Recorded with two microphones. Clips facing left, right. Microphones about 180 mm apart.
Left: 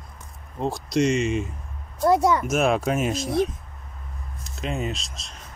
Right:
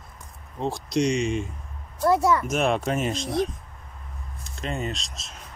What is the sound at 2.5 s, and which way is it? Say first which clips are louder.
Speech: left 2 dB; 5° left (ahead or behind).